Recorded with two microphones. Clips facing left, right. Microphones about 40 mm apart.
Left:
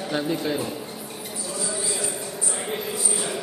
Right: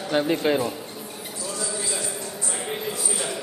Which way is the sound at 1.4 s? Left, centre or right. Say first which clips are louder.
Even; centre.